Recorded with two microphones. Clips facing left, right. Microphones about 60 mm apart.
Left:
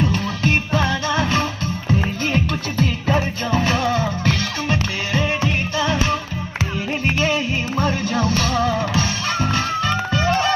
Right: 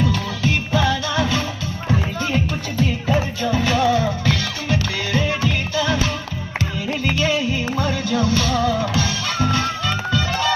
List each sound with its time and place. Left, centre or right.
0.1 s music: left
2.3 s music: left
7.7 s music: left